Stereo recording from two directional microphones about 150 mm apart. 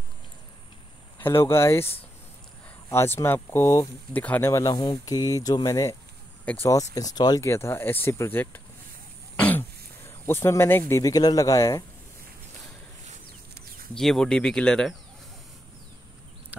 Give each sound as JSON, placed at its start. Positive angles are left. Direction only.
{"t": 1.2, "sound": "speech", "side_deg": 15}
{"t": 2.9, "sound": "speech", "side_deg": 15}
{"t": 6.4, "sound": "speech", "side_deg": 10}
{"t": 7.2, "sound": "speech", "side_deg": 25}
{"t": 13.9, "sound": "speech", "side_deg": 5}